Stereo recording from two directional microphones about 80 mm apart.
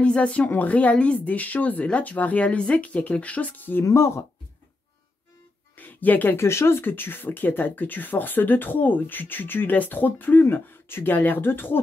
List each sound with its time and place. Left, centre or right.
0.0 s speech: centre
3.8 s speech: left
5.8 s speech: left